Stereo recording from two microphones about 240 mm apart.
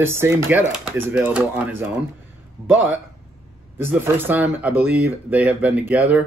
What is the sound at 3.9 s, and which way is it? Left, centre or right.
Speech, centre.